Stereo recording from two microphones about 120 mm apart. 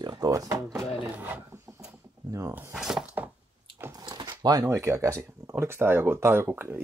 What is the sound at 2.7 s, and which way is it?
Speech, 5° right (ahead or behind).